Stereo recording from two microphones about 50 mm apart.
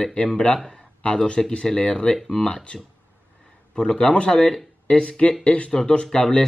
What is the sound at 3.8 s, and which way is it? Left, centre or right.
Speech, centre.